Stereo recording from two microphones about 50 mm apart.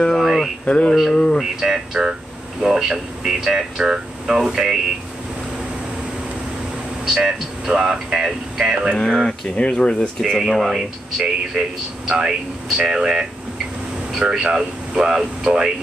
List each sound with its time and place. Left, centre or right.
0.2 s a sound: centre
0.7 s speech: left
1.4 s speech: centre
7.2 s speech: centre
8.9 s speech: centre
10.2 s speech: centre